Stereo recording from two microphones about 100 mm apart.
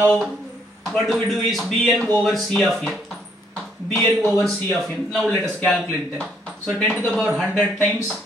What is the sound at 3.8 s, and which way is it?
Speech, 20° left (ahead or behind).